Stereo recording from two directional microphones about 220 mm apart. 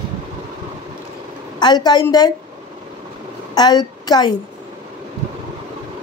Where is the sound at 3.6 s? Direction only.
20° left (ahead or behind).